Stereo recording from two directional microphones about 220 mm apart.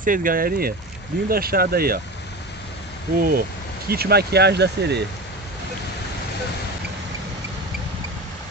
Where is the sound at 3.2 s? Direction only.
40° right (ahead or behind).